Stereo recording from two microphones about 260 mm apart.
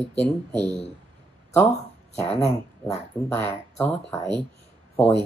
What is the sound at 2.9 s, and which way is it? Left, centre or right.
Speech, centre.